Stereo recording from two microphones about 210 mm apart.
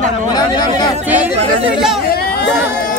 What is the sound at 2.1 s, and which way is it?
Chatter, 45° left (ahead or behind).